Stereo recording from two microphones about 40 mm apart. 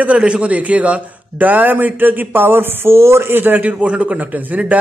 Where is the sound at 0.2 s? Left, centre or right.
Right.